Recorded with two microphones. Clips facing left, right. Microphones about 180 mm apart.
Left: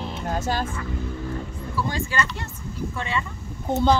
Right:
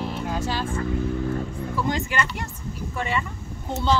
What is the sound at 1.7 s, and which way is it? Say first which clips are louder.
Speech: right 1 dB; 15° right (ahead or behind).